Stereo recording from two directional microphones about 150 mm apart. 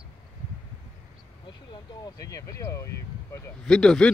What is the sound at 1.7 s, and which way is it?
Speech, 30° left (ahead or behind).